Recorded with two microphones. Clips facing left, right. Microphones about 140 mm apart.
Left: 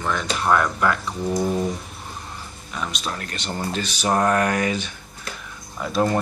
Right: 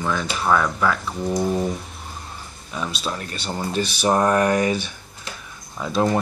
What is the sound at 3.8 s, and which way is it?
Speech, 10° right (ahead or behind).